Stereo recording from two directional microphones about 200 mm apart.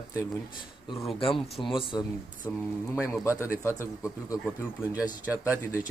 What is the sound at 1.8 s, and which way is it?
Speech, 20° left (ahead or behind).